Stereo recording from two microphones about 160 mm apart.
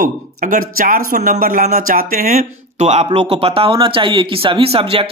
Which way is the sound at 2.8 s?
45° right (ahead or behind).